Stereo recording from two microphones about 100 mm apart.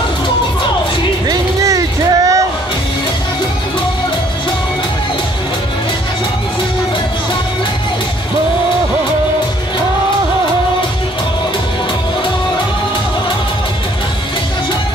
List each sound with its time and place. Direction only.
1.2 s vehicle: 35° right (ahead or behind)